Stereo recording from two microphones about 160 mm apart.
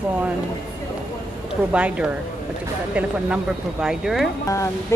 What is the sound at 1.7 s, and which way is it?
Speech, 5° right (ahead or behind).